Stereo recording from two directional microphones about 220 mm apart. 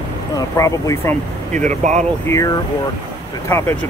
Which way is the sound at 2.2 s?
15° left (ahead or behind).